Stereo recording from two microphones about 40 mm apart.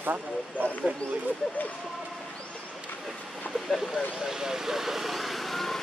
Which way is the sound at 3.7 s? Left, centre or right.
Centre.